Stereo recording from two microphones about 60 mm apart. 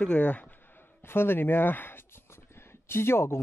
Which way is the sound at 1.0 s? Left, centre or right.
Left.